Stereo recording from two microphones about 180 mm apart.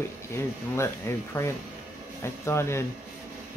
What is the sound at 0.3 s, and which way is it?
Speech, 15° left (ahead or behind).